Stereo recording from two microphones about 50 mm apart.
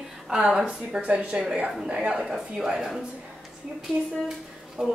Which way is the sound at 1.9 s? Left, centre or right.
Centre.